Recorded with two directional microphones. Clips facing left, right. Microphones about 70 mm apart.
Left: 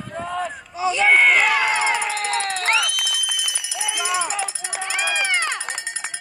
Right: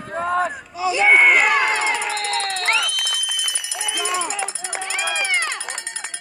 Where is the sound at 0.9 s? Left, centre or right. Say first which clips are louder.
Right 1 dB; centre.